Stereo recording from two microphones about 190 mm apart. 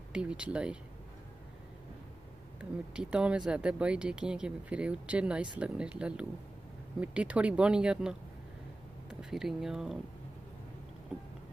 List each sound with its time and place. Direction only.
0.1 s speech: 5° right (ahead or behind)
2.6 s speech: 5° right (ahead or behind)
9.2 s speech: centre (ahead or behind)